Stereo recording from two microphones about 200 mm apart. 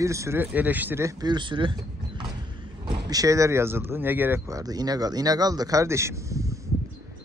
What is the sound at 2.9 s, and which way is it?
Speech, 20° right (ahead or behind).